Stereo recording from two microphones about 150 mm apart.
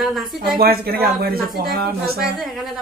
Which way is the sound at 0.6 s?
90° right.